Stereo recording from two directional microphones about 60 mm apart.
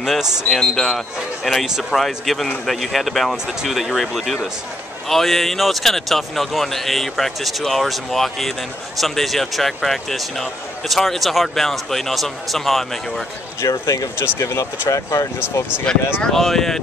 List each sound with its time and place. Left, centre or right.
0.0 s speech: centre
0.5 s a man's voice: centre
13.6 s speech: left
14.1 s speech: left
14.6 s speech: left
15.9 s a man's voice: centre